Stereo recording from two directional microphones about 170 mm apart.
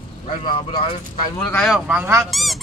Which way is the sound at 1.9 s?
15° right (ahead or behind).